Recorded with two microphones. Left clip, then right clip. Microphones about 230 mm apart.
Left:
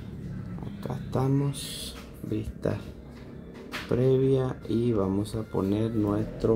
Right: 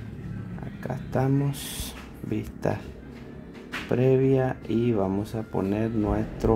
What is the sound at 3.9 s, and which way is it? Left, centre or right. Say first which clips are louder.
Speech: right 2 dB; centre.